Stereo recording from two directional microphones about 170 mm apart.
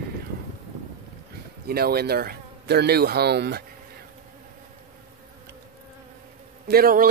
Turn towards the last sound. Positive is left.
turn(degrees=-60)  # may be behind; listen again after turning